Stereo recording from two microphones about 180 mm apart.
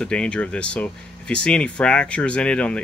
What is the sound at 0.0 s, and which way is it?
Speech, 5° left (ahead or behind).